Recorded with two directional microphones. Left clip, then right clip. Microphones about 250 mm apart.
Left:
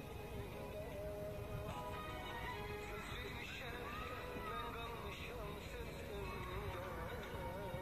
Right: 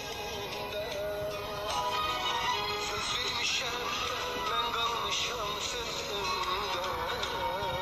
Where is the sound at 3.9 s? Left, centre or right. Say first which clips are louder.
Right 15 dB; right.